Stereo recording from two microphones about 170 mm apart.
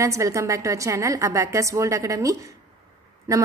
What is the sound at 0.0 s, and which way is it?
A woman's voice, 20° right (ahead or behind).